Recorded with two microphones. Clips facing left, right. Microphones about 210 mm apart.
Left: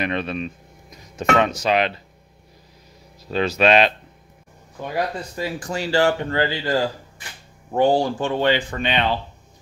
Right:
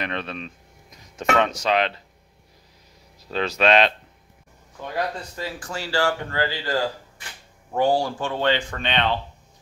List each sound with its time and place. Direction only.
0.0 s speech: 10° left (ahead or behind)
3.3 s speech: 5° left (ahead or behind)